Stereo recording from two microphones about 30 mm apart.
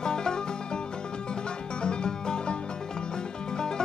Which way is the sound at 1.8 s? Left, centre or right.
Left.